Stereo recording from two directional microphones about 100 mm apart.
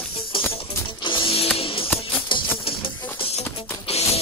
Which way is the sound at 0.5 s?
55° left (ahead or behind).